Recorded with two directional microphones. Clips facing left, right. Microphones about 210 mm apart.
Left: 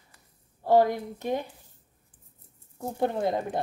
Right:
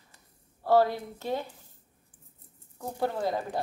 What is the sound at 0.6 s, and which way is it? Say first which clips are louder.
Speech: left 2 dB; 15° left (ahead or behind).